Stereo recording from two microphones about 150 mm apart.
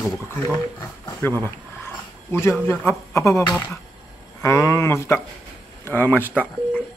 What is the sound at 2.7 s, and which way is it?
Speech, 15° left (ahead or behind).